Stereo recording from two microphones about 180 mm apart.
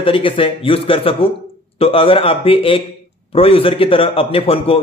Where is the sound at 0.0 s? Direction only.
30° left (ahead or behind).